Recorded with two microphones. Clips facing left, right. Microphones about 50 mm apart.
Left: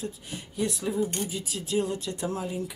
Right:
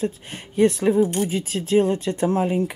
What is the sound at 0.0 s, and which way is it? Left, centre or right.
Speech, right.